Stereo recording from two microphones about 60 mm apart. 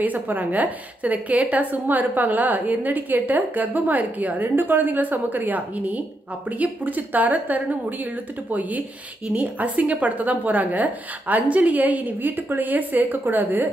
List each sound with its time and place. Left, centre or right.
0.0 s a woman's voice: right